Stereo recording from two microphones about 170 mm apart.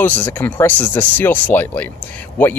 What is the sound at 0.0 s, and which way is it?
Speech, 10° left (ahead or behind).